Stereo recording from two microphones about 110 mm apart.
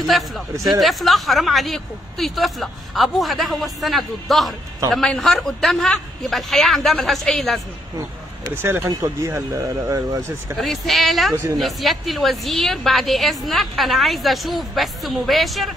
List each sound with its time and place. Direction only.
0.7 s a woman's voice: centre (ahead or behind)
8.5 s speech: 20° right (ahead or behind)
10.6 s a woman's voice: centre (ahead or behind)